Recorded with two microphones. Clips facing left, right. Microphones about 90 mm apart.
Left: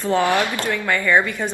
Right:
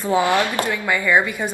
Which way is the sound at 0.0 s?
15° right (ahead or behind).